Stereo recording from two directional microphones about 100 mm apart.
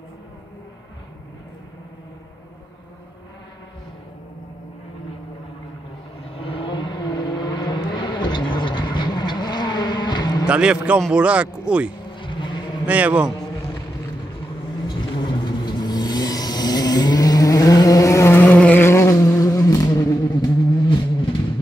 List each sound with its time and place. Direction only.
6.2 s vehicle: 65° left (ahead or behind); by 10.4 s 45° left (ahead or behind)
10.4 s speech: 10° right (ahead or behind)
12.2 s vehicle: 55° left (ahead or behind)
12.8 s speech: 15° right (ahead or behind)
14.9 s vehicle: 50° left (ahead or behind); by 18.8 s 15° left (ahead or behind)
18.8 s vehicle: 25° left (ahead or behind)
20.0 s a sound: 35° left (ahead or behind)